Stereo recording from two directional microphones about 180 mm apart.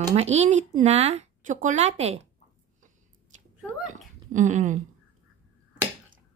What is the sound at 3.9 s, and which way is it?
Hiccup, 40° right (ahead or behind).